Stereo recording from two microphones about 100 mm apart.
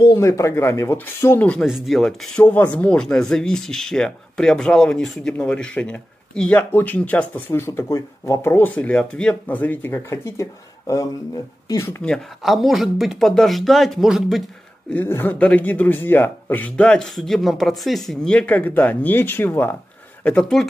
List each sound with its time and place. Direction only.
0.2 s speech: 30° left (ahead or behind)
1.6 s speech: centre (ahead or behind)
2.4 s a man's voice: 15° left (ahead or behind)
12.0 s speech: 5° left (ahead or behind)
15.0 s a man's voice: 20° left (ahead or behind)
20.2 s a man's voice: 10° left (ahead or behind)